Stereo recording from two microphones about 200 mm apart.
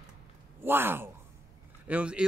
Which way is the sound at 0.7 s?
10° right (ahead or behind).